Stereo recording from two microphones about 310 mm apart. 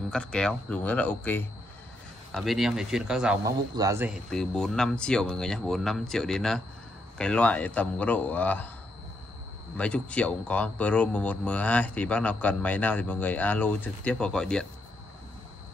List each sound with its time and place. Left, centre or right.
0.1 s speech: centre
9.8 s speech: centre